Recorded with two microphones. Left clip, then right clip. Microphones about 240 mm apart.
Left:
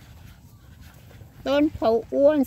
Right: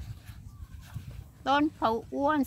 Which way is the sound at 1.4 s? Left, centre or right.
Centre.